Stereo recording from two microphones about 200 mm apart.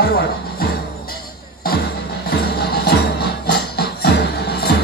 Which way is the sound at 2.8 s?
50° left (ahead or behind).